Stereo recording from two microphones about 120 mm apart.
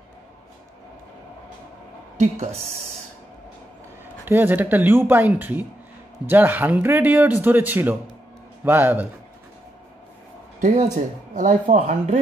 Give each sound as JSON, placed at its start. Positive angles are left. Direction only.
{"t": 2.1, "sound": "speech", "side_deg": -70}
{"t": 4.3, "sound": "a man's voice", "side_deg": -15}
{"t": 10.6, "sound": "speech", "side_deg": -80}